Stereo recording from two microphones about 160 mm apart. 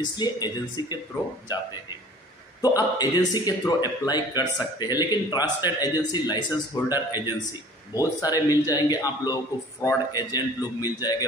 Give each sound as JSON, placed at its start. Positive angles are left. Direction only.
{"t": 0.0, "sound": "a man's voice", "side_deg": 25}
{"t": 2.6, "sound": "a man's voice", "side_deg": 25}